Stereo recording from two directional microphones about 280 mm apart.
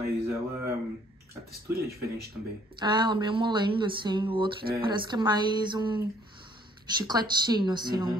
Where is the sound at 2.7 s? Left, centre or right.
Centre.